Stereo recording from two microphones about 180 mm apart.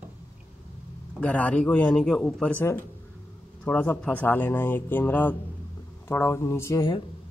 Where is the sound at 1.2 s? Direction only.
10° left (ahead or behind).